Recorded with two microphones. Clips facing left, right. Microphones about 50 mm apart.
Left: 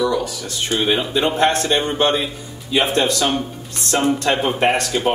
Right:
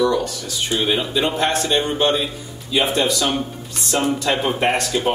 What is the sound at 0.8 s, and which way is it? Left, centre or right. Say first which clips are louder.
Speech: left 2 dB; centre.